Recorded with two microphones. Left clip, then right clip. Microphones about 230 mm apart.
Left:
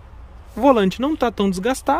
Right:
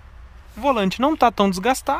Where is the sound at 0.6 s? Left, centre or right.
Centre.